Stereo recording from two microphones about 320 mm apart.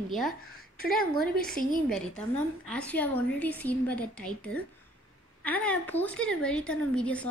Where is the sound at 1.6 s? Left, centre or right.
Left.